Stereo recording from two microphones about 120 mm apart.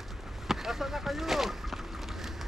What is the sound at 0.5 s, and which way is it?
Speech, centre (ahead or behind).